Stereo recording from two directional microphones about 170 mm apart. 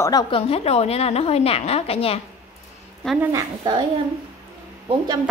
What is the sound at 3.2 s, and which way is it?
Speech, 20° right (ahead or behind).